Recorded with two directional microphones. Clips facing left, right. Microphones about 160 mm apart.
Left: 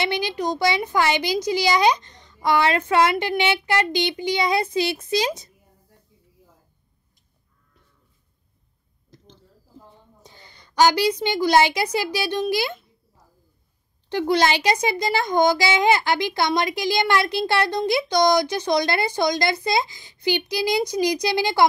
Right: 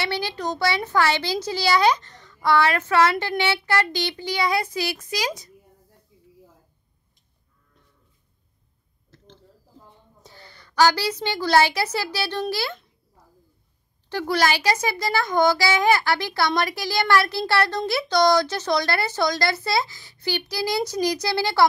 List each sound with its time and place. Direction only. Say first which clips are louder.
0.0 s speech: left 3 dB; 15° left (ahead or behind)
9.1 s a sound: left 3 dB; 15° left (ahead or behind)
10.2 s a woman's voice: right 5 dB; 15° left (ahead or behind)
14.0 s a child's voice: left 3 dB; 20° left (ahead or behind)